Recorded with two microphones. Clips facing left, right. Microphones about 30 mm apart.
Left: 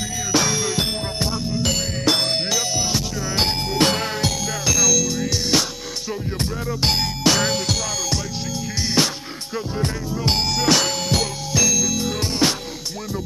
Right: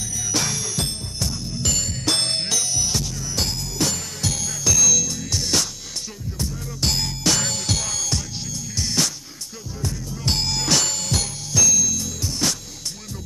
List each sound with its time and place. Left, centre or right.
0.3 s music: centre
2.6 s music: left
3.4 s music: left
4.2 s music: left
6.8 s music: left
7.7 s music: centre
8.8 s music: left
10.2 s music: centre; by 12.5 s left